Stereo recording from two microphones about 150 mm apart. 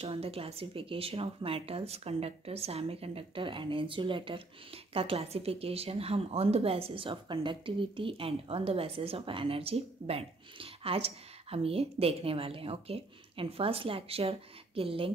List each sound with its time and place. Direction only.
0.0 s speech: 40° right (ahead or behind)